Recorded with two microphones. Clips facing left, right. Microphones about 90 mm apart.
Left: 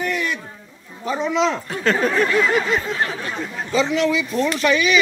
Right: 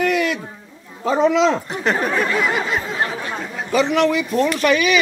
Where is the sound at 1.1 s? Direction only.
90° right.